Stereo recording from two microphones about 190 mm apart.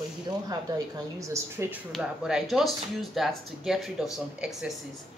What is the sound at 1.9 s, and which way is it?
Speech, 5° right (ahead or behind).